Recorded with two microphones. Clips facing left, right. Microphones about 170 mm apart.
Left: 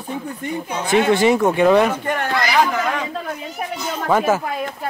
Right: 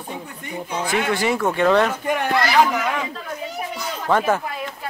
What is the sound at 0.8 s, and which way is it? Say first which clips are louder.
Speech: left 7 dB; 25° left (ahead or behind).